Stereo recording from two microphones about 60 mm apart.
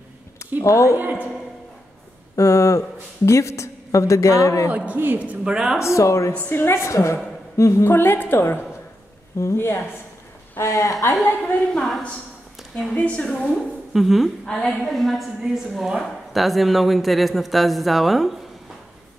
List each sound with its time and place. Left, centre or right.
0.6 s a woman's voice: left
2.3 s a woman's voice: left
4.6 s a woman's voice: right
5.5 s speech: centre
5.8 s a woman's voice: left
6.5 s a woman's voice: left
7.9 s a woman's voice: left
9.4 s a woman's voice: left
10.6 s a woman's voice: left
11.4 s a woman's voice: left
12.9 s a woman's voice: left
13.9 s a woman's voice: centre
14.4 s a woman's voice: centre
14.9 s a woman's voice: centre